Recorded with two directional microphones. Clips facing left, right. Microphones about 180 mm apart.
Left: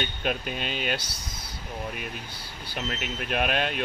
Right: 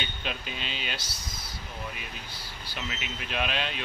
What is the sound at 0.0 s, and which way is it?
Speech, 50° left (ahead or behind).